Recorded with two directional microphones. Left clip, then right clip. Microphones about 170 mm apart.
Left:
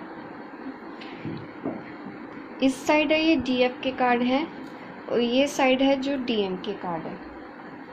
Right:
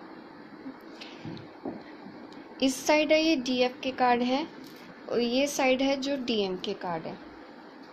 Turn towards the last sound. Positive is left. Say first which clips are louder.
# left 3 dB
turn(degrees=-35)  # may be behind; listen again after turning